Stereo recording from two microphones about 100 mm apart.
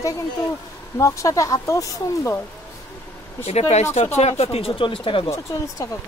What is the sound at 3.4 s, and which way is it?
Speech, 90° left.